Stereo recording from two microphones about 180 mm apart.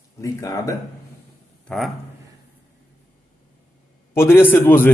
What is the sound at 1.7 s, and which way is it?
Speech, 5° left (ahead or behind).